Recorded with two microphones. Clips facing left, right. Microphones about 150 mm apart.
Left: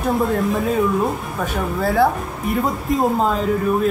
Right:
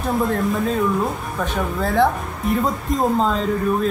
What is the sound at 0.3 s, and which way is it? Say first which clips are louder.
Speech: left 1 dB; centre (ahead or behind).